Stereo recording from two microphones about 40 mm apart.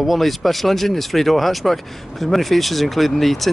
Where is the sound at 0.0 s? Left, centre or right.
Centre.